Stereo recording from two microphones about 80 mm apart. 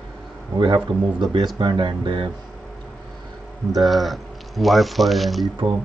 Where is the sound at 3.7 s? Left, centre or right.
Centre.